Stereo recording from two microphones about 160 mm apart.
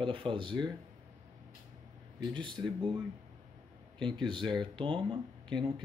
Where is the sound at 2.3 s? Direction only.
30° right (ahead or behind).